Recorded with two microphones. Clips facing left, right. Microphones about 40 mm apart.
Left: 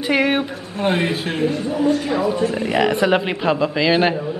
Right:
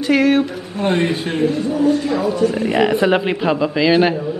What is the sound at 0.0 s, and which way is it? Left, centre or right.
Speech, centre.